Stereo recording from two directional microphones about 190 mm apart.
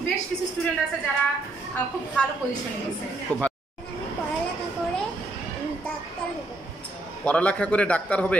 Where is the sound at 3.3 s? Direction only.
5° left (ahead or behind).